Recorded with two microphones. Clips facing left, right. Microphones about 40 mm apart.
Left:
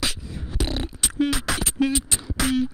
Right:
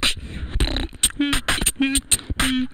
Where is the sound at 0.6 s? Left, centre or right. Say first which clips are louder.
Right 2 dB; right.